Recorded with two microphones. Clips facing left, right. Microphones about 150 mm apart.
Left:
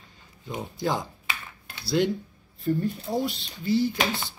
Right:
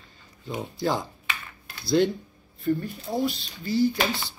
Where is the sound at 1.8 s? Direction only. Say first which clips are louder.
Right 2 dB; 15° left (ahead or behind).